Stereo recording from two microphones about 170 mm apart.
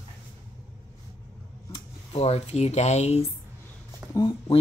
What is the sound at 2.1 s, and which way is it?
Speech, 35° left (ahead or behind).